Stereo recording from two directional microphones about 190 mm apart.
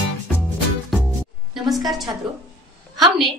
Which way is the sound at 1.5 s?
Centre (ahead or behind).